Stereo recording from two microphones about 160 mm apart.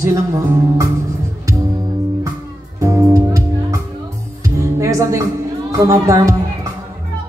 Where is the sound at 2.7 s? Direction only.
20° right (ahead or behind).